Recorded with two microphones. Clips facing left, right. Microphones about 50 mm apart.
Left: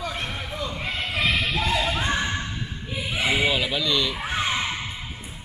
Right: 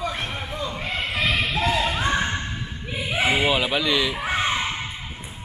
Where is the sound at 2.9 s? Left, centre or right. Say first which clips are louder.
Right 3 dB; right.